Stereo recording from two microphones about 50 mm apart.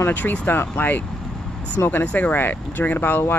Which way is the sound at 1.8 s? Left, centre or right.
Left.